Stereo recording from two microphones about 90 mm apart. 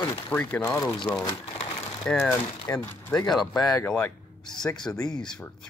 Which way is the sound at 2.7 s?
30° left (ahead or behind).